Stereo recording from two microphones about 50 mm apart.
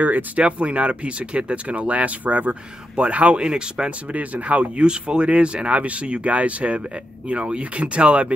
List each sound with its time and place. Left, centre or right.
0.0 s speech: right
4.1 s speech: right